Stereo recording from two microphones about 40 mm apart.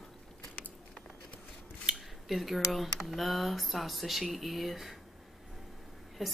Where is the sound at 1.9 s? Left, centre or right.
Right.